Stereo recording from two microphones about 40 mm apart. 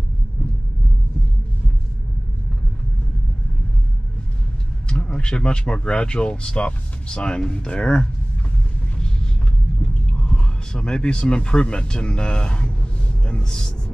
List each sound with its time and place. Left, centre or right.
4.8 s speech: left
9.8 s speech: left